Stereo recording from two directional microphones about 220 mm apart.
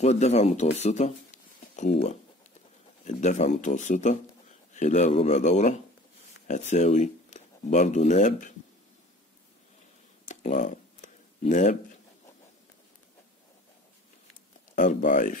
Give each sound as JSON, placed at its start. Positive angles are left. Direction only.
{"t": 0.0, "sound": "speech", "side_deg": 30}
{"t": 3.1, "sound": "speech", "side_deg": 30}
{"t": 10.2, "sound": "a sound", "side_deg": 30}
{"t": 15.0, "sound": "speech", "side_deg": 35}